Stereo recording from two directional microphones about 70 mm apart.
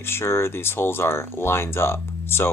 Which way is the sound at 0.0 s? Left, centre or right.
Left.